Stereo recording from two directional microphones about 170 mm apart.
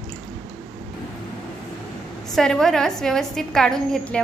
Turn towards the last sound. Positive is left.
turn(degrees=5)  # may be behind; listen again after turning